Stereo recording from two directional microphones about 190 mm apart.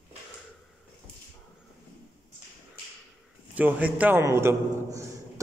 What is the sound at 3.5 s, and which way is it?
A man's voice, 10° right (ahead or behind).